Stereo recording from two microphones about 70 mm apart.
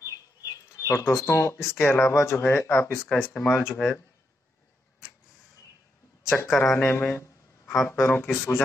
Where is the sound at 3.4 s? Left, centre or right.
Centre.